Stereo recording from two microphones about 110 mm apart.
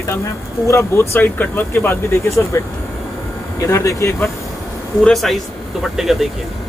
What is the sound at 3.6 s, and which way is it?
Speech, 30° left (ahead or behind).